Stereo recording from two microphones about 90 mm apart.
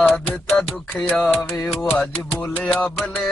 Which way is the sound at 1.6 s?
5° left (ahead or behind).